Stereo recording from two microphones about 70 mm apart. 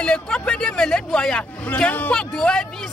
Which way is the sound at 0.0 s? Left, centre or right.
Centre.